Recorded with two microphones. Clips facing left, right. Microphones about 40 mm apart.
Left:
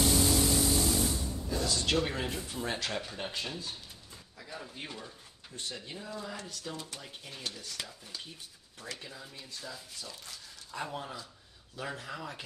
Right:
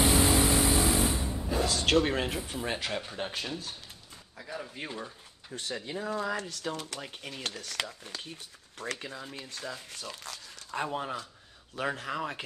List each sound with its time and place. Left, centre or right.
0.0 s sewing machine: right
1.7 s speech: right
2.5 s speech: centre
4.4 s speech: centre
4.8 s speech: right
5.9 s speech: right
10.8 s speech: right
11.7 s speech: right